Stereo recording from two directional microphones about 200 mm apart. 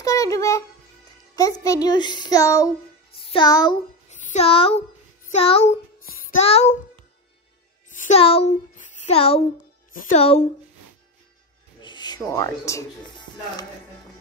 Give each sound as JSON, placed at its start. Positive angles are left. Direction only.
{"t": 0.0, "sound": "music", "side_deg": 15}
{"t": 1.3, "sound": "speech", "side_deg": 15}
{"t": 3.2, "sound": "music", "side_deg": 25}
{"t": 4.1, "sound": "music", "side_deg": 35}
{"t": 5.3, "sound": "child singing", "side_deg": 30}
{"t": 7.9, "sound": "a child's voice", "side_deg": 35}
{"t": 9.9, "sound": "speech", "side_deg": 40}
{"t": 11.8, "sound": "a sound", "side_deg": 20}
{"t": 12.2, "sound": "speech", "side_deg": 15}